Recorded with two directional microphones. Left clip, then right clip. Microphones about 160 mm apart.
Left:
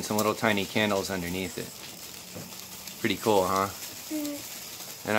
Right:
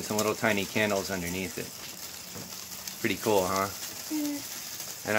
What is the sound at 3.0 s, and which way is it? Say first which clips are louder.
Speech: left 2 dB; 15° left (ahead or behind).